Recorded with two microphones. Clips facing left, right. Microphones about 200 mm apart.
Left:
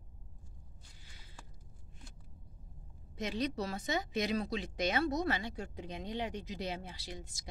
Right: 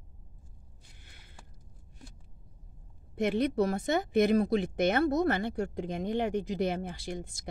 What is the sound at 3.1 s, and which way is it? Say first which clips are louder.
Speech: right 9 dB; 55° right (ahead or behind).